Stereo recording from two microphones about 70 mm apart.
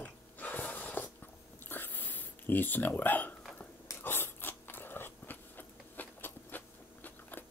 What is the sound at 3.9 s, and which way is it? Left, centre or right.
Biting, left.